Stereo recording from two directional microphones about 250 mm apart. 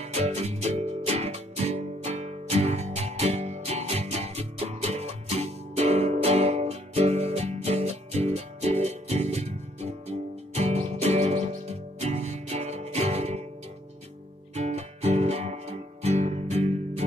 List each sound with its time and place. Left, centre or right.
0.0 s music: right
14.5 s music: right